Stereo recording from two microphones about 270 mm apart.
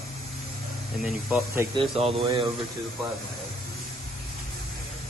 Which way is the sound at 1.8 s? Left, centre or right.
Right.